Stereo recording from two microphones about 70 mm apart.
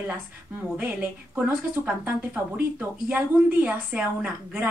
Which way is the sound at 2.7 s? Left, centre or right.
Right.